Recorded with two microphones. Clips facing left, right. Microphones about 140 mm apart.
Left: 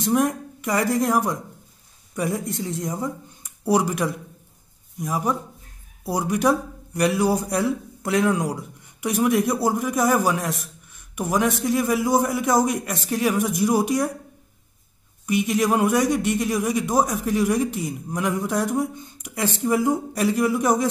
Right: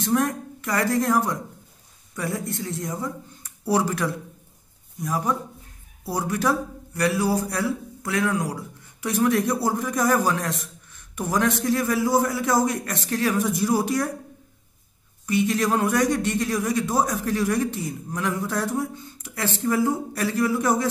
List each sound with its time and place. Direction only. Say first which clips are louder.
0.0 s a man's voice: left 2 dB; 15° left (ahead or behind)
15.2 s a man's voice: left 1 dB; 15° left (ahead or behind)